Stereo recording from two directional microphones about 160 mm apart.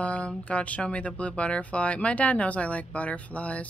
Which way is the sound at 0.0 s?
10° left (ahead or behind).